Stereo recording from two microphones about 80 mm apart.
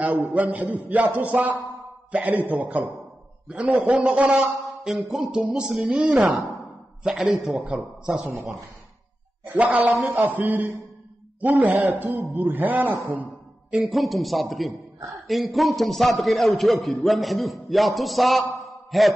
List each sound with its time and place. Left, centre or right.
0.3 s a man's voice: centre
4.8 s speech: centre
8.0 s speech: centre
9.5 s a man's voice: centre
13.7 s a man's voice: centre
18.9 s mantra: centre